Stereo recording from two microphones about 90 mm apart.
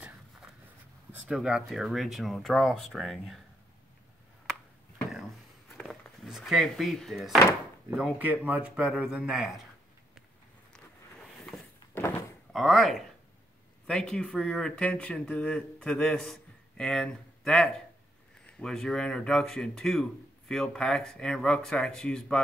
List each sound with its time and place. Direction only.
1.3 s speech: 5° right (ahead or behind)
6.2 s speech: centre (ahead or behind)
7.9 s speech: 15° right (ahead or behind)
11.9 s door: 25° left (ahead or behind)
12.5 s speech: centre (ahead or behind)